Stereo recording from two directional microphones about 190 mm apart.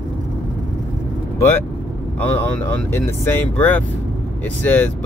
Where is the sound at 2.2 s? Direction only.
10° left (ahead or behind).